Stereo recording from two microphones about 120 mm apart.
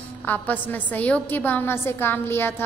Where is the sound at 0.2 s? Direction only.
15° left (ahead or behind).